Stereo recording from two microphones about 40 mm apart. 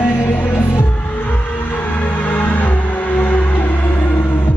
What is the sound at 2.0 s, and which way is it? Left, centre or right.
Music, left.